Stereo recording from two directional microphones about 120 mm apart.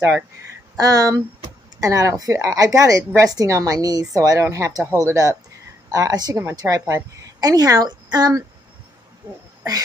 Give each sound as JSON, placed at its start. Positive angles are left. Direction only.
{"t": 0.7, "sound": "a woman's voice", "side_deg": -30}